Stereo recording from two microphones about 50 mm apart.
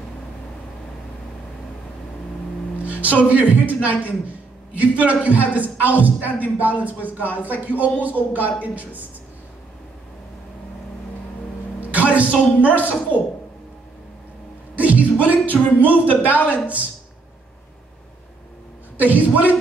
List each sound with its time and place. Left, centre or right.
2.8 s a man's voice: right
11.8 s a woman's voice: right
14.8 s a sound: right
15.8 s a man's voice: right
16.3 s a woman's voice: left
16.5 s a woman's voice: right
18.9 s a man's voice: right